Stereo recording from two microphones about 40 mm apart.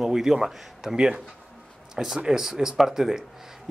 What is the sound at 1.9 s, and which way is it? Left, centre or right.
Speech, centre.